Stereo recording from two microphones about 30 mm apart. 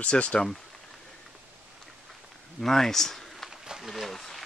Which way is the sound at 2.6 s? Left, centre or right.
Centre.